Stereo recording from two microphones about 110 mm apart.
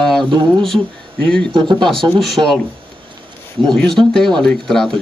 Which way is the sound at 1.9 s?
5° left (ahead or behind).